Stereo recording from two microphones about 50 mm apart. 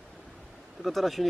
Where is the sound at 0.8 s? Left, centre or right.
Centre.